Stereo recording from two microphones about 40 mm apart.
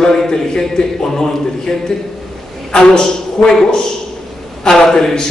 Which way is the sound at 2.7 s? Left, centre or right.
Left.